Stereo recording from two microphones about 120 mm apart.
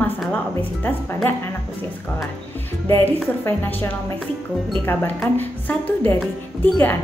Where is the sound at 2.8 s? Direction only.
20° left (ahead or behind).